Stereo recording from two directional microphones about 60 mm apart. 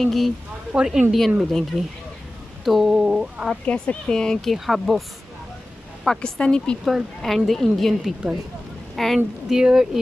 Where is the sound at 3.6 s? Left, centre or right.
Centre.